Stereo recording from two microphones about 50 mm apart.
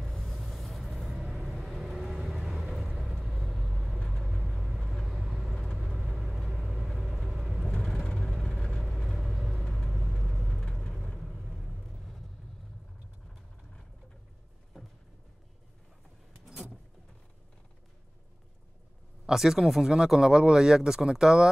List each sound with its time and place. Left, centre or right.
0.0 s vehicle: centre
8.8 s vehicle: centre
10.6 s vehicle: centre
11.1 s vehicle: centre
19.2 s speech: centre